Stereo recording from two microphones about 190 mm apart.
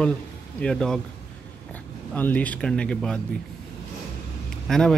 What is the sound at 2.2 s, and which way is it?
Speech, 10° left (ahead or behind).